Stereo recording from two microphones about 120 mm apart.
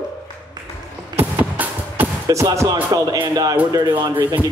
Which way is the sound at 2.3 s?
25° right (ahead or behind).